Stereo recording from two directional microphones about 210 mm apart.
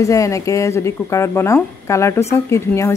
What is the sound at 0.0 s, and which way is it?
Speech, 15° left (ahead or behind).